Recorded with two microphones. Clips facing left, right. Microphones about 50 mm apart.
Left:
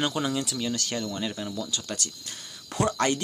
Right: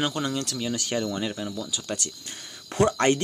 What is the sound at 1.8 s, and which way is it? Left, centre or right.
Speech, right.